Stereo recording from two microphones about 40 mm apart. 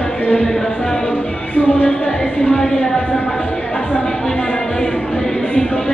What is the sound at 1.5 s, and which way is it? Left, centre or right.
Music, left.